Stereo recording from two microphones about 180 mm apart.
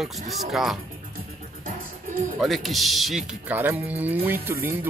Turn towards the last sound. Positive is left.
turn(degrees=-10)  # may be behind; listen again after turning